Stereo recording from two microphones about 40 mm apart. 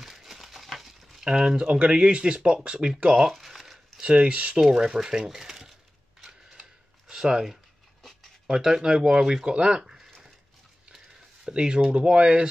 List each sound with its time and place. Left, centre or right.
0.0 s crumpling: centre
0.7 s a sound: centre
1.2 s speech: centre
3.3 s crumpling: centre
4.0 s speech: right
4.6 s speech: centre
7.1 s a sound: centre
8.5 s speech: centre
11.4 s speech: right